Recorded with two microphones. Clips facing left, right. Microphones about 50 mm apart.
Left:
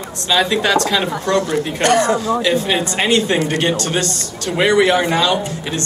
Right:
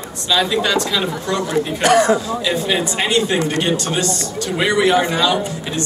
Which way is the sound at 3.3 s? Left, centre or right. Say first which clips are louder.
Left 1 dB; centre.